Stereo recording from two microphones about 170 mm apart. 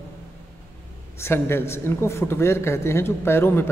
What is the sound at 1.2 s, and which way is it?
A man's voice, 15° left (ahead or behind).